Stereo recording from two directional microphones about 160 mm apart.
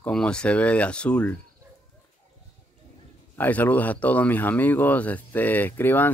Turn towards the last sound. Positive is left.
turn(degrees=10)  # may be behind; listen again after turning